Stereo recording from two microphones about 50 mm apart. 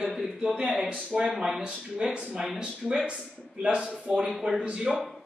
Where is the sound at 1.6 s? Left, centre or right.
Centre.